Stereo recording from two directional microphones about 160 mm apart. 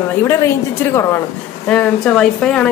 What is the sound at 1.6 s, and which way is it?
A man's voice, 5° left (ahead or behind).